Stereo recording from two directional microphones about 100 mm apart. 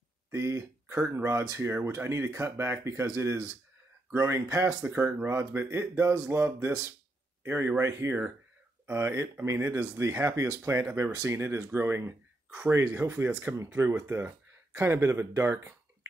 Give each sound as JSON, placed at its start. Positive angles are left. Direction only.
{"t": 0.3, "sound": "speech", "side_deg": -30}